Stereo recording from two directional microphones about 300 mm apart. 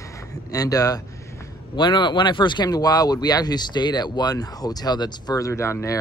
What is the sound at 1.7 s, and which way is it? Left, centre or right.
Speech, centre.